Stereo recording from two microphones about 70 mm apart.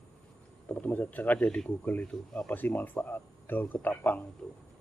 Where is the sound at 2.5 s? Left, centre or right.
Left.